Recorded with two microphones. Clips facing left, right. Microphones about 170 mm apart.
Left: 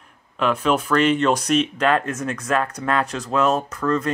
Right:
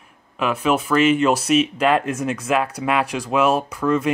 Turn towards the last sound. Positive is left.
turn(degrees=-10)  # may be behind; listen again after turning